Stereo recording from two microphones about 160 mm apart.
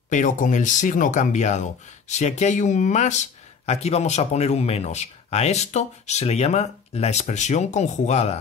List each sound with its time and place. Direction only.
0.1 s speech: 50° left (ahead or behind)